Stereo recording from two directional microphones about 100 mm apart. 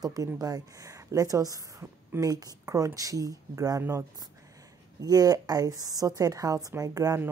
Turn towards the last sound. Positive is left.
turn(degrees=-35)  # may be behind; listen again after turning